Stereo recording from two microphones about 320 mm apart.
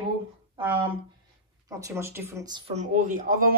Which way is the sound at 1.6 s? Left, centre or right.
Centre.